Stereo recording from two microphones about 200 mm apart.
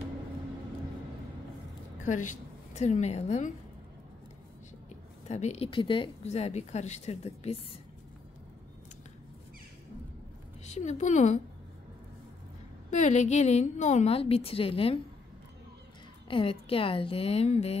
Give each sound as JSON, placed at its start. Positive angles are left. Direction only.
{"t": 2.0, "sound": "a woman's voice", "side_deg": 40}
{"t": 5.3, "sound": "speech", "side_deg": 35}
{"t": 10.6, "sound": "a woman's voice", "side_deg": 35}
{"t": 12.9, "sound": "speech", "side_deg": 35}
{"t": 16.3, "sound": "a woman's voice", "side_deg": 25}